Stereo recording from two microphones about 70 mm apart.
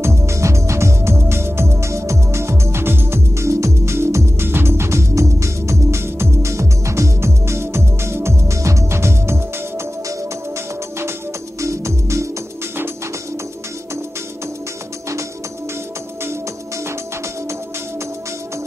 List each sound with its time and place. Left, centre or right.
0.0 s music: right
11.6 s music: right